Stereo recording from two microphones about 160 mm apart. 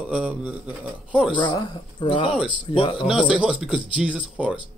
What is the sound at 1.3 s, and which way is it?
Speech, 30° left (ahead or behind).